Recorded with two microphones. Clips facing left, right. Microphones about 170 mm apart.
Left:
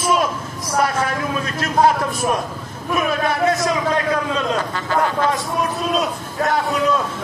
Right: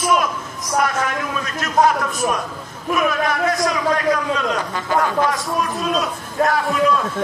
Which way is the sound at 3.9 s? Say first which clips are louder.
Right 1 dB; 25° left (ahead or behind).